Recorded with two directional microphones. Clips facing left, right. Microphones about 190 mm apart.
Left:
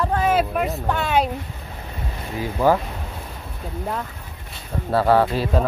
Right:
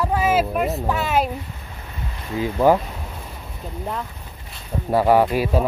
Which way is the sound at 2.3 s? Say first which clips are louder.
Right 2 dB; 20° right (ahead or behind).